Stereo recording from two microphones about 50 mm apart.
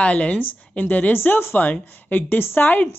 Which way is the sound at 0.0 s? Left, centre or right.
Left.